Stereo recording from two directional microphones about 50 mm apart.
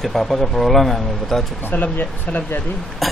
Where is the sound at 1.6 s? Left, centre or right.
Left.